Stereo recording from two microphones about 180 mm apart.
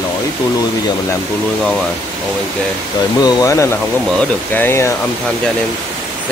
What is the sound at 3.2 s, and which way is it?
Speech, 20° left (ahead or behind).